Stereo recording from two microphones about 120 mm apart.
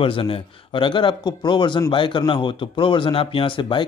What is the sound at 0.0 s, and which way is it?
Speech, 50° left (ahead or behind).